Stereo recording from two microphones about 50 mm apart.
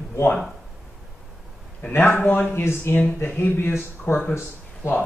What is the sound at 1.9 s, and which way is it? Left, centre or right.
Speech, left.